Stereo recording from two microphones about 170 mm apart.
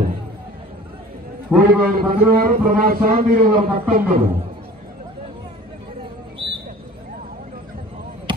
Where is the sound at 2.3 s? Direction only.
60° right (ahead or behind).